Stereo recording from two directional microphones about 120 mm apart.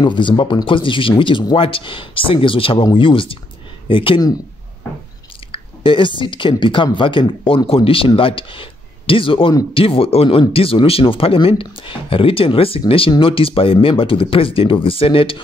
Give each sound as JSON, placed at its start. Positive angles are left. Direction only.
{"t": 0.0, "sound": "speech", "side_deg": 40}
{"t": 5.5, "sound": "speech", "side_deg": 45}